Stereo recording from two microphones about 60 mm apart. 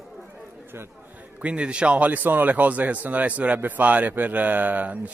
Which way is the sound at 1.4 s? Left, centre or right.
Centre.